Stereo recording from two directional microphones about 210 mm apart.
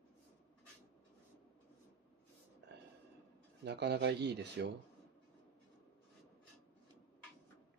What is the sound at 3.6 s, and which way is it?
Speech, 55° right (ahead or behind).